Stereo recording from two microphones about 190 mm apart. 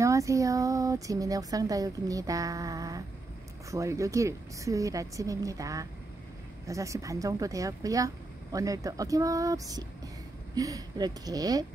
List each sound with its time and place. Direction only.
0.0 s speech: 15° right (ahead or behind)